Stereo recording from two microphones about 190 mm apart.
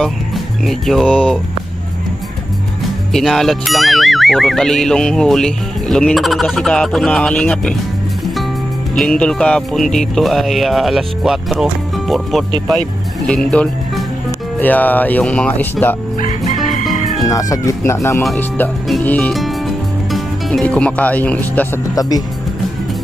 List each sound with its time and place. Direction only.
0.7 s speech: centre (ahead or behind)
3.1 s speech: centre (ahead or behind)
8.9 s speech: 5° left (ahead or behind)
16.2 s chicken: 40° left (ahead or behind)
17.3 s speech: 15° left (ahead or behind)
18.2 s speech: centre (ahead or behind)